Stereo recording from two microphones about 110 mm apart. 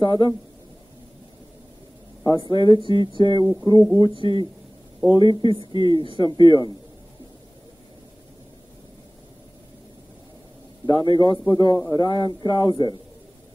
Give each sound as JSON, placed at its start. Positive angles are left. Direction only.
{"t": 0.0, "sound": "a man's voice", "side_deg": 45}
{"t": 2.2, "sound": "a man's voice", "side_deg": 40}
{"t": 10.9, "sound": "a man's voice", "side_deg": 45}